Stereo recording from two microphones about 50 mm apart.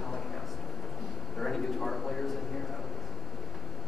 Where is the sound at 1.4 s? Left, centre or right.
Centre.